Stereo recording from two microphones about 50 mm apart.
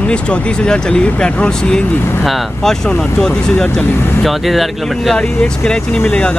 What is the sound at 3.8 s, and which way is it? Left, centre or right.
Speech, left.